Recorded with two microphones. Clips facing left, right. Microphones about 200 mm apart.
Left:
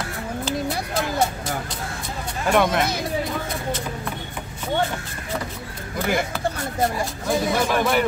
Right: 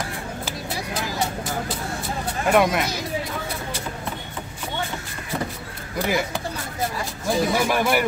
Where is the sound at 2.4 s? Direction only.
5° right (ahead or behind).